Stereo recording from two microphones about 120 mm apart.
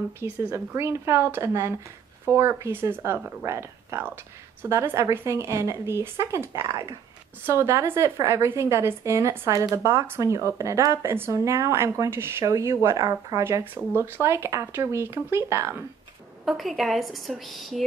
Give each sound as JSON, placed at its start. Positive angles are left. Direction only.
{"t": 0.2, "sound": "a woman's voice", "side_deg": -25}
{"t": 16.4, "sound": "a woman's voice", "side_deg": 0}